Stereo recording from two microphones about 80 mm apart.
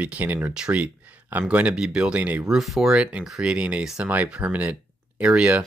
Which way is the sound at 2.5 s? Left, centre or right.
Centre.